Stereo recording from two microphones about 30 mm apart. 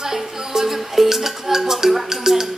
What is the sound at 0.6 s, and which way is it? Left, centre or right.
Music, centre.